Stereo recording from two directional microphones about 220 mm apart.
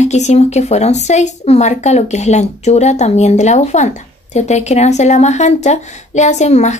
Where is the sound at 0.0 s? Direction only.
30° left (ahead or behind).